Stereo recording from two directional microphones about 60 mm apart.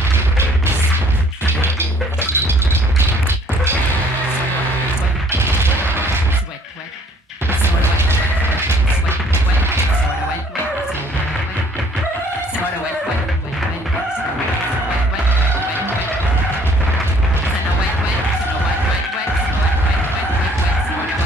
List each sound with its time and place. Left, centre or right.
1.4 s music: right
5.3 s fusillade: right